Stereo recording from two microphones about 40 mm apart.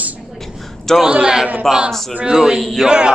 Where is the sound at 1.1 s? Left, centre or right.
Right.